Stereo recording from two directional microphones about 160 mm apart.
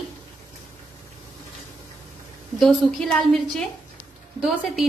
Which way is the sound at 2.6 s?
Centre (ahead or behind).